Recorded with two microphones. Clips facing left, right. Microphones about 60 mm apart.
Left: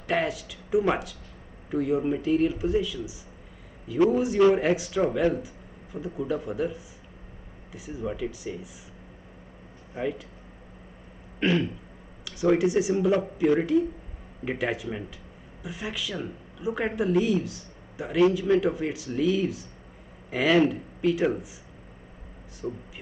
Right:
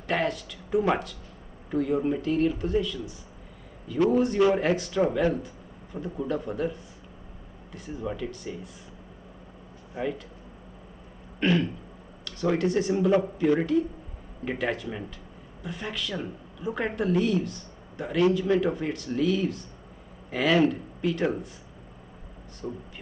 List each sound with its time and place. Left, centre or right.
0.0 s speech: centre
10.0 s speech: left
11.3 s throat clearing: centre
12.3 s speech: centre
22.6 s speech: centre